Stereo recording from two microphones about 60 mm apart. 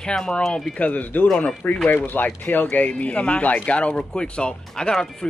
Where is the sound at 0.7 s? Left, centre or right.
Left.